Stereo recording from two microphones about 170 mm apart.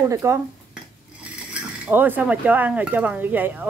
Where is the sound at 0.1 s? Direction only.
15° right (ahead or behind).